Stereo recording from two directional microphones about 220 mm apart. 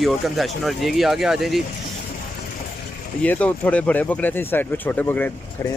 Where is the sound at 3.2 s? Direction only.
5° left (ahead or behind).